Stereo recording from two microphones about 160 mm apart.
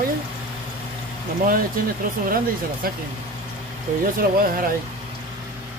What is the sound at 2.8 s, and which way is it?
Speech, 65° right (ahead or behind).